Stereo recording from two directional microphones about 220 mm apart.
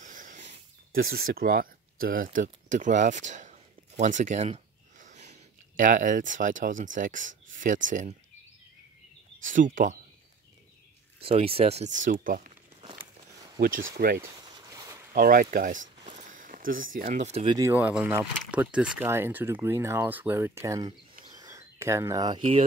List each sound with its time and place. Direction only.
0.0 s speech: 35° right (ahead or behind)
9.4 s speech: 35° right (ahead or behind)
11.2 s speech: 25° right (ahead or behind)
13.6 s speech: 40° right (ahead or behind)
14.2 s a sound: 15° right (ahead or behind)
15.1 s speech: 40° right (ahead or behind)
17.6 s speech: 10° right (ahead or behind)
21.3 s a sound: 15° right (ahead or behind)